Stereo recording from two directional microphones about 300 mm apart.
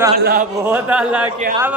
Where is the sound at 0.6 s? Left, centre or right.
Centre.